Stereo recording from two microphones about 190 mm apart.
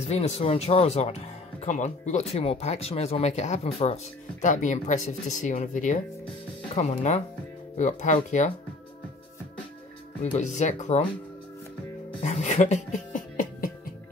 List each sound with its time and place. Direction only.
0.1 s speech: 35° left (ahead or behind)
10.2 s speech: 40° left (ahead or behind)
12.2 s music: 35° left (ahead or behind)